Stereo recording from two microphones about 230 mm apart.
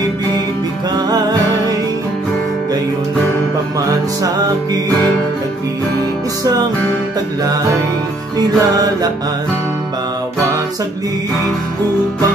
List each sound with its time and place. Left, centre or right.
8.4 s music: centre